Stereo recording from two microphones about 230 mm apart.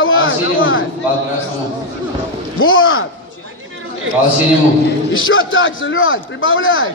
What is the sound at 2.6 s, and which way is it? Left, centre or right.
Speech, left.